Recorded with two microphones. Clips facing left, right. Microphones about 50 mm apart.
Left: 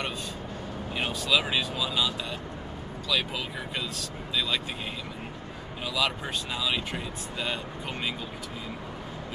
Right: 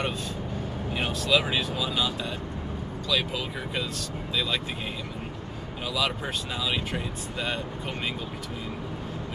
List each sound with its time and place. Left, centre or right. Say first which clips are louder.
0.9 s speech: right 2 dB; centre
5.9 s speech: even; centre